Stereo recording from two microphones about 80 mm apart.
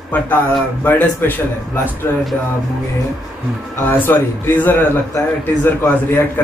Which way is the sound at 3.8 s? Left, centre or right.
Left.